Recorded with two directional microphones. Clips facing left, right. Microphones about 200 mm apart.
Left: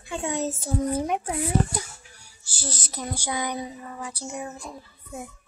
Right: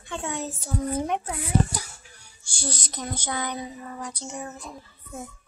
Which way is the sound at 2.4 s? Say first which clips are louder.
Right 2 dB; 5° left (ahead or behind).